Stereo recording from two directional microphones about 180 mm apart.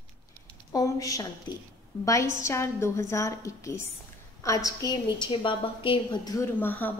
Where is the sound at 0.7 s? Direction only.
20° left (ahead or behind).